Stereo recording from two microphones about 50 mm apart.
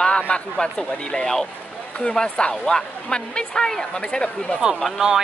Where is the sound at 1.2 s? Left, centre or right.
Centre.